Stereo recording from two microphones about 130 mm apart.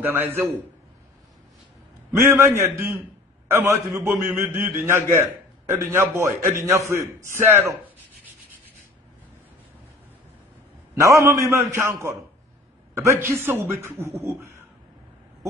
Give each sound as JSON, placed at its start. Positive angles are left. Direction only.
{"t": 0.0, "sound": "a man's voice", "side_deg": -15}
{"t": 2.0, "sound": "a man's voice", "side_deg": -20}
{"t": 11.0, "sound": "a man's voice", "side_deg": -25}